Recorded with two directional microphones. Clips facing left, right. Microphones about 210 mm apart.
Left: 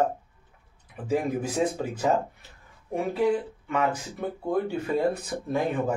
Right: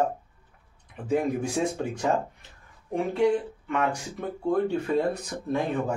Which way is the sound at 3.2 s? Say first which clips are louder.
Right 2 dB; 5° left (ahead or behind).